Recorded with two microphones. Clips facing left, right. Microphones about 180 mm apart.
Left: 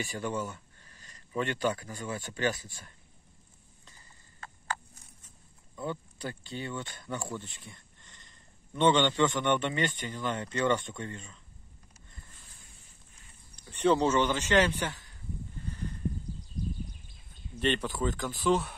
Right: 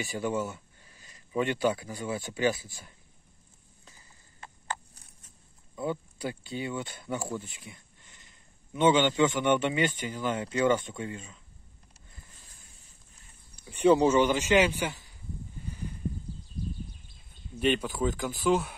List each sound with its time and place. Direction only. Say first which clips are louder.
0.1 s speech: right 3 dB; 5° right (ahead or behind)
5.8 s speech: right 4 dB; 10° right (ahead or behind)
13.6 s speech: right 4 dB; 10° right (ahead or behind)
15.6 s a sound: left 1 dB; 10° right (ahead or behind)
17.6 s speech: right 3 dB; 5° right (ahead or behind)